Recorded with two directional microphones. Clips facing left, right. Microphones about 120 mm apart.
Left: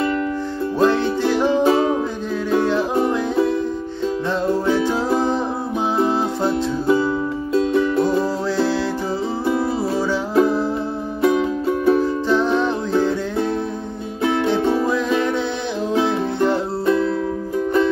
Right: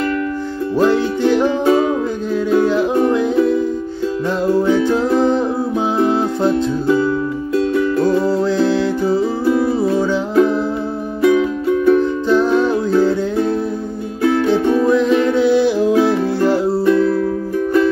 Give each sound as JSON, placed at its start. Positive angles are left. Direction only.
{"t": 0.8, "sound": "music", "side_deg": 0}
{"t": 1.7, "sound": "music", "side_deg": 30}
{"t": 2.5, "sound": "music", "side_deg": 0}
{"t": 4.6, "sound": "music", "side_deg": 0}
{"t": 7.5, "sound": "music", "side_deg": 25}
{"t": 8.5, "sound": "music", "side_deg": 0}
{"t": 10.3, "sound": "music", "side_deg": 30}
{"t": 12.0, "sound": "music", "side_deg": 0}
{"t": 14.2, "sound": "music", "side_deg": 25}
{"t": 15.3, "sound": "music", "side_deg": -5}
{"t": 16.8, "sound": "music", "side_deg": 25}